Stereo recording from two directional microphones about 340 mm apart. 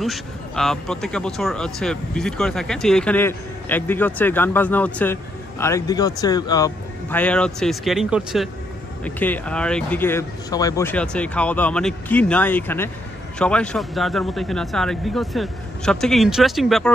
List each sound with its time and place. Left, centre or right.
0.0 s speech: centre